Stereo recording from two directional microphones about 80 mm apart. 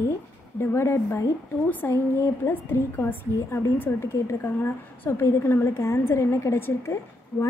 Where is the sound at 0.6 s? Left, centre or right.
Left.